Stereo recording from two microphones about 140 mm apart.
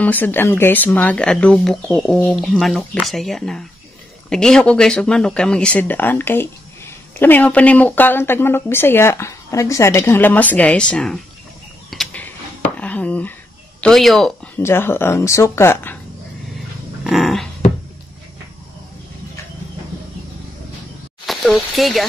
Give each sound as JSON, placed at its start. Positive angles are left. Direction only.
{"t": 0.0, "sound": "speech", "side_deg": 15}
{"t": 11.9, "sound": "a sound", "side_deg": 0}
{"t": 13.7, "sound": "speech", "side_deg": 0}
{"t": 14.6, "sound": "speech", "side_deg": 15}
{"t": 17.0, "sound": "a sound", "side_deg": 0}
{"t": 21.3, "sound": "speech", "side_deg": 0}